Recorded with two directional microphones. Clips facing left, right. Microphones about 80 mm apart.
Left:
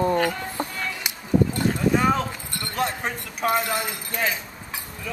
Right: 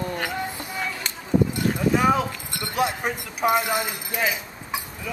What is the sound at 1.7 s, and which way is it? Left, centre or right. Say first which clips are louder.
Clip-clop: right 1 dB; centre.